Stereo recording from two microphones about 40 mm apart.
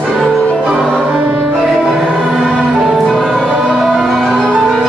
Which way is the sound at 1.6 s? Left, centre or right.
Centre.